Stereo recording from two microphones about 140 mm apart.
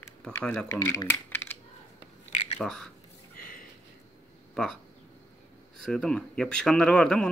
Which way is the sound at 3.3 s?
90° left.